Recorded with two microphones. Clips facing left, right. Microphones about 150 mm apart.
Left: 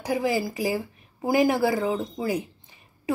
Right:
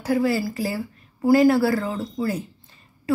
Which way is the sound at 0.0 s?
15° left (ahead or behind).